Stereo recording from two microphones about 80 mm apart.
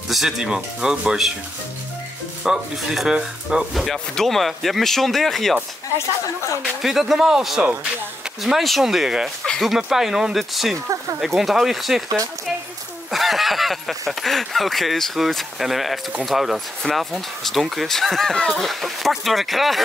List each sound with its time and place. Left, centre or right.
0.1 s speech: centre
2.4 s speech: centre
5.9 s speech: left
6.8 s speech: centre
13.1 s speech: centre